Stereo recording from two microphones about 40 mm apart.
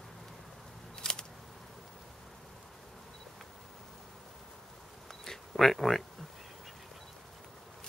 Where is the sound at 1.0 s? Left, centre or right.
Centre.